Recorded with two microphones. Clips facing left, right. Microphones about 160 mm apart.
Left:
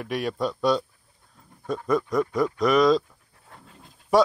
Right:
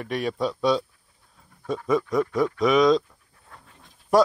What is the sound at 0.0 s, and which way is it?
Speech, centre (ahead or behind).